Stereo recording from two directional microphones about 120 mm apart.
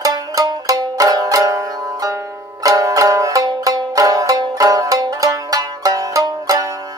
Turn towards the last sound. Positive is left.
turn(degrees=-30)  # may be behind; listen again after turning